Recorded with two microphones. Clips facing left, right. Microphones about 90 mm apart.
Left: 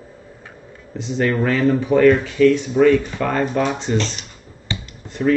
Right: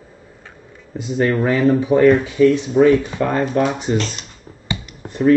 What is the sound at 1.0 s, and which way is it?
Speech, 10° right (ahead or behind).